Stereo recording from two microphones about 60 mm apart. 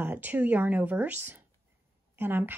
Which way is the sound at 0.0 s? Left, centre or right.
Right.